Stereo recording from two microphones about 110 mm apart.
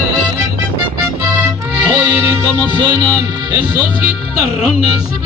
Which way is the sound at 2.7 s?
40° right (ahead or behind).